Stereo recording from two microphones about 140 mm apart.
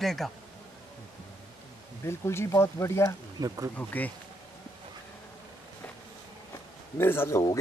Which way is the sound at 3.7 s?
10° left (ahead or behind).